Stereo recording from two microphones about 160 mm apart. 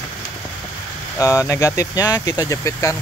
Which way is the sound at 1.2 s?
20° left (ahead or behind).